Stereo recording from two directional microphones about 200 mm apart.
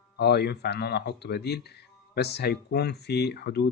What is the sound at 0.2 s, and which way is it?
Speech, 55° left (ahead or behind).